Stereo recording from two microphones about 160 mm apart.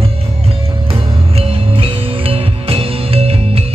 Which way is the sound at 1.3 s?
35° right (ahead or behind).